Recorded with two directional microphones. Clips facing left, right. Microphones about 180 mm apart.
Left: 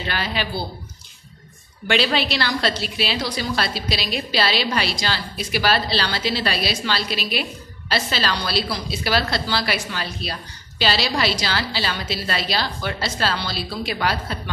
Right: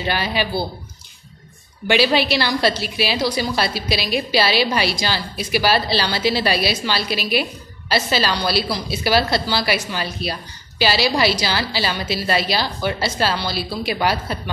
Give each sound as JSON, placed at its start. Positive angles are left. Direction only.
{"t": 0.0, "sound": "a woman's voice", "side_deg": -10}
{"t": 2.0, "sound": "a woman's voice", "side_deg": -10}